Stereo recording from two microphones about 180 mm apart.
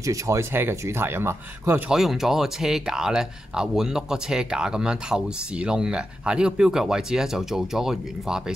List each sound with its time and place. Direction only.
0.0 s speech: 15° right (ahead or behind)
2.0 s speech: centre (ahead or behind)